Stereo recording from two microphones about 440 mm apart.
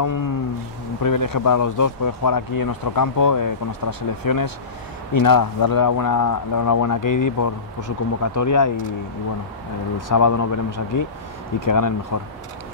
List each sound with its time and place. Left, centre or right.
0.0 s speech: left
9.9 s speech: left